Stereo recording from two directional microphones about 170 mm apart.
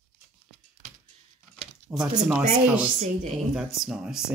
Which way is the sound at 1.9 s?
Centre (ahead or behind).